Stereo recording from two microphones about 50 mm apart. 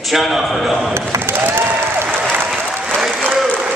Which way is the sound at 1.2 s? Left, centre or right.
Right.